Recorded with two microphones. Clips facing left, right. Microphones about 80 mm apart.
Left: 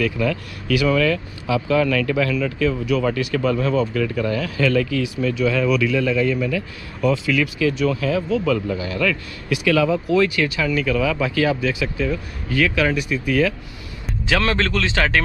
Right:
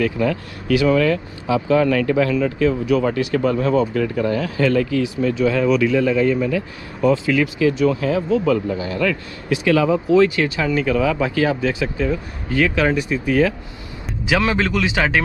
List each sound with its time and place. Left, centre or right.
0.0 s speech: right
14.2 s a man's voice: centre